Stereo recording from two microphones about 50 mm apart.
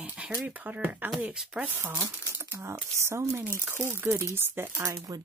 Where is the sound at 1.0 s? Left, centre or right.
Right.